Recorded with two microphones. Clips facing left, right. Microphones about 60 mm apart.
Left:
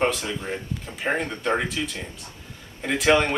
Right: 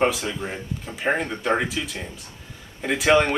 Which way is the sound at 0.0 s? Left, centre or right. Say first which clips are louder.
Right 2 dB; centre.